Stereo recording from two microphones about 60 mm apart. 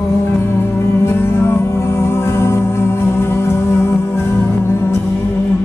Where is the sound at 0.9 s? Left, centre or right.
Left.